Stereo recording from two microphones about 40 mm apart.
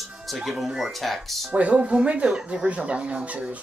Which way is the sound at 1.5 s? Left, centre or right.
Right.